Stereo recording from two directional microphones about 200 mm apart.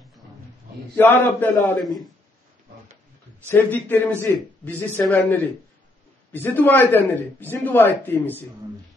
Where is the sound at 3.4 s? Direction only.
10° left (ahead or behind).